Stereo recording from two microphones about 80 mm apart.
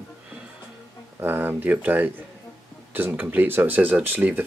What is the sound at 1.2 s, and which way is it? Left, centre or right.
Speech, right.